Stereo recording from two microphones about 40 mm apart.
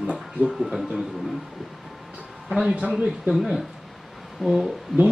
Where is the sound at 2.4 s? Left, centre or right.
Centre.